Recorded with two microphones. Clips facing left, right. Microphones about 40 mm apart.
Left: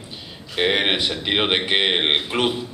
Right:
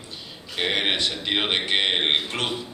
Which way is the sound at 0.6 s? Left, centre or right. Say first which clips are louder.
Left 4 dB; centre.